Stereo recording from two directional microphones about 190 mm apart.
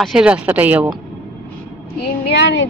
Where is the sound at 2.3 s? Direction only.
65° left (ahead or behind).